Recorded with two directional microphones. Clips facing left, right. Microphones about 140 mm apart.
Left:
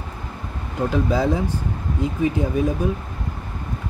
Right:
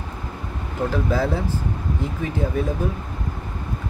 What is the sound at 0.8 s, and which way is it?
Speech, 15° left (ahead or behind).